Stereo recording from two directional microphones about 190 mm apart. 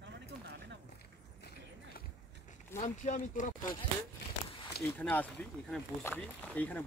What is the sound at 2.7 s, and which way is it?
Speech, 40° left (ahead or behind).